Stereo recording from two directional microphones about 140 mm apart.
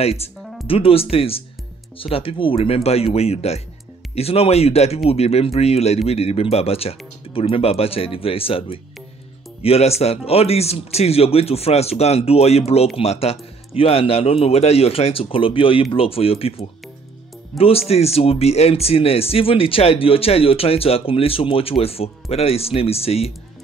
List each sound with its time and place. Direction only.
0.0 s speech: 45° left (ahead or behind)
0.4 s music: centre (ahead or behind)
0.7 s speech: 40° left (ahead or behind)